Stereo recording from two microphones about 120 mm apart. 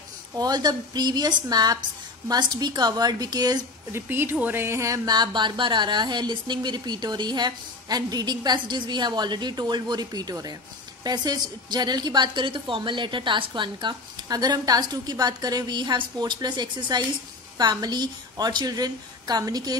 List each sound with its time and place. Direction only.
0.4 s speech: 35° right (ahead or behind)
3.9 s speech: 20° right (ahead or behind)